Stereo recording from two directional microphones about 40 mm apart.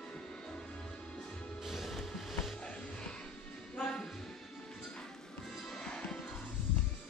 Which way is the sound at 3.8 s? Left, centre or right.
Centre.